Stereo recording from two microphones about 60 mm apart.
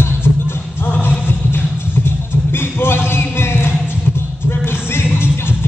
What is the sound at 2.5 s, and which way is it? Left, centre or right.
Music, left.